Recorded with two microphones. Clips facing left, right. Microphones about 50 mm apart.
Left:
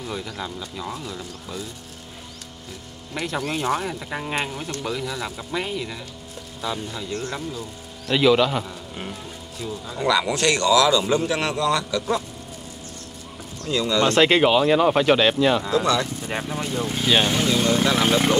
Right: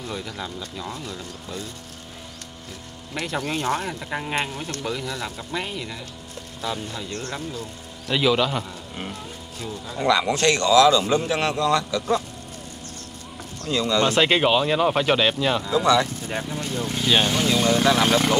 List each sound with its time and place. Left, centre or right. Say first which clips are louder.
0.0 s speech: left 1 dB; centre
3.3 s speech: left 1 dB; centre
3.5 s speech: left 1 dB; centre
4.1 s speech: right 2 dB; centre
7.1 s speech: left 2 dB; centre
10.0 s speech: right 1 dB; right
13.7 s speech: even; right
14.0 s speech: left 4 dB; centre
15.7 s speech: right 2 dB; right
16.3 s speech: left 1 dB; left
16.8 s speech: even; centre
17.6 s vehicle: right 1 dB; centre